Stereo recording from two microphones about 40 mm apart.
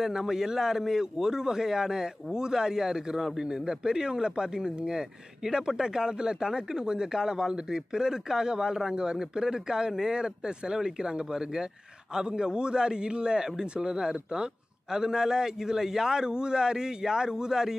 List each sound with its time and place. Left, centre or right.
0.0 s a man's voice: centre
3.4 s speech: centre